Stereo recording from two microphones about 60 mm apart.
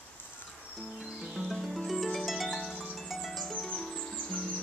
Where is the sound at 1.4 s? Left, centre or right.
Centre.